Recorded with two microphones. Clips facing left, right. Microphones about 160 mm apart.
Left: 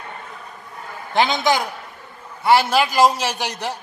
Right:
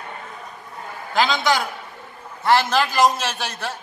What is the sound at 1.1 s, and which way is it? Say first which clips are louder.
A man's voice: left 2 dB; 20° left (ahead or behind).